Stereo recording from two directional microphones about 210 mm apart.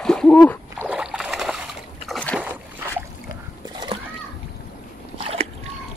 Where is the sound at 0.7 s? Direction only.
5° right (ahead or behind).